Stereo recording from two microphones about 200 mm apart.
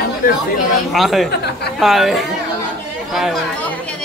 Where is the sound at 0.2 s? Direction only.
45° left (ahead or behind).